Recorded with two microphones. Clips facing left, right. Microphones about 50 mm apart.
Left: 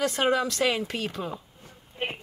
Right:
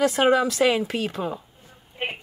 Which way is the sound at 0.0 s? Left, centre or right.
Centre.